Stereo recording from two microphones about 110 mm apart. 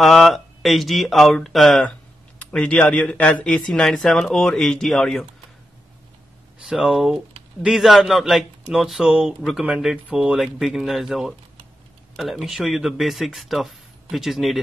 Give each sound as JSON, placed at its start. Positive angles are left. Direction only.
{"t": 0.0, "sound": "a man's voice", "side_deg": 0}
{"t": 6.6, "sound": "a man's voice", "side_deg": -5}